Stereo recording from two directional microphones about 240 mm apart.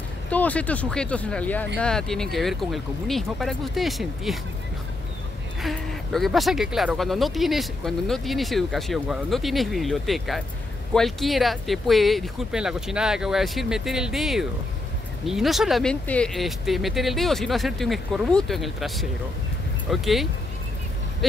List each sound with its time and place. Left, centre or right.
0.3 s speech: centre
5.6 s speech: centre